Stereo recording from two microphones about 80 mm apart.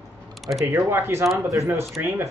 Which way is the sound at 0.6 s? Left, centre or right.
Right.